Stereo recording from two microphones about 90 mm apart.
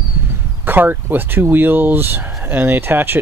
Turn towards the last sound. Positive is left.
turn(degrees=-25)  # may be behind; listen again after turning